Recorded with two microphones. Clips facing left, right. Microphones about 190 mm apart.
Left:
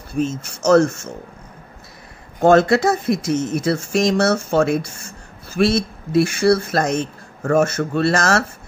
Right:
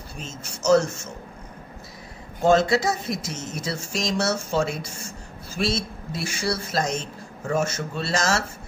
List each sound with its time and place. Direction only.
0.2 s speech: 55° left (ahead or behind)
2.4 s speech: 60° left (ahead or behind)